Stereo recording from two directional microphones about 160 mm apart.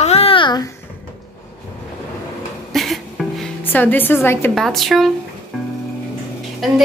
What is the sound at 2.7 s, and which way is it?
Music, centre (ahead or behind).